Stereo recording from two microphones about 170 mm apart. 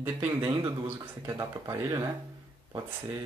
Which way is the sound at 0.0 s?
15° right (ahead or behind).